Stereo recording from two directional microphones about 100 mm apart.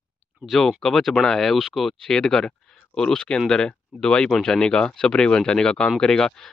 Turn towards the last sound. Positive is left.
turn(degrees=5)  # may be behind; listen again after turning